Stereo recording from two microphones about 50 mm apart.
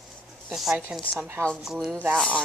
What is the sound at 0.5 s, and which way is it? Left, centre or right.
A woman's voice, centre.